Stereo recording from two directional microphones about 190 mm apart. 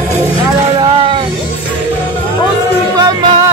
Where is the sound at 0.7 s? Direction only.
25° right (ahead or behind).